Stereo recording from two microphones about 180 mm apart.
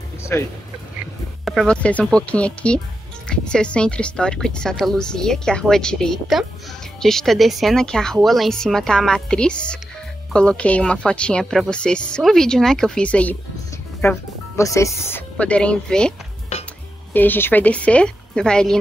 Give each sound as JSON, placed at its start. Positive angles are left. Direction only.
{"t": 0.2, "sound": "music", "side_deg": 15}
{"t": 1.4, "sound": "a woman's voice", "side_deg": 0}